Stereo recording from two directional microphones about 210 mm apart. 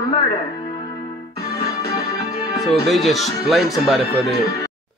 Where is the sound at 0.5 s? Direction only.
20° left (ahead or behind).